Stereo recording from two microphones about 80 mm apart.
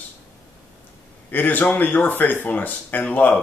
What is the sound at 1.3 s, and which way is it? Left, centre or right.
Speech, left.